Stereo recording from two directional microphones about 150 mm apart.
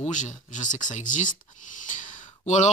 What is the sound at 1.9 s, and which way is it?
Sigh, 60° left (ahead or behind).